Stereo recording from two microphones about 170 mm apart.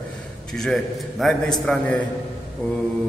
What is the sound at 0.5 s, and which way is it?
A man's voice, centre (ahead or behind).